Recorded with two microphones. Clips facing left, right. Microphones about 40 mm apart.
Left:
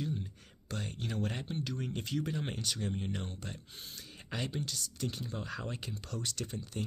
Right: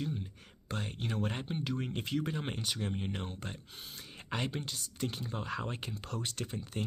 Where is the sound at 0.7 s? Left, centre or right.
Right.